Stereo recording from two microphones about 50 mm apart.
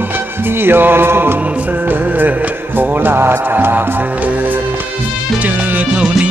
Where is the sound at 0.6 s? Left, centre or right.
Right.